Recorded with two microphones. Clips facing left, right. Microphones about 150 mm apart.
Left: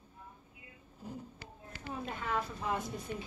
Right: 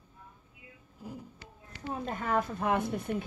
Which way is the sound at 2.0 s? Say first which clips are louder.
Right 6 dB; 45° right (ahead or behind).